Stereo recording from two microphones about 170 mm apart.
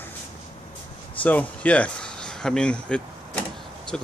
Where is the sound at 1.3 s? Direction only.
10° left (ahead or behind).